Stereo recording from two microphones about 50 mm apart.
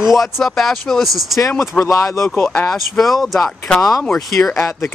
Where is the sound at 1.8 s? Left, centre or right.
Left.